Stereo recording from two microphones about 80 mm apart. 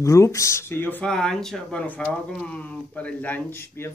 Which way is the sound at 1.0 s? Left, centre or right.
Centre.